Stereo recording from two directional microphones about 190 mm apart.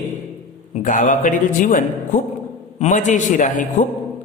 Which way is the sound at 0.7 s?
45° left (ahead or behind).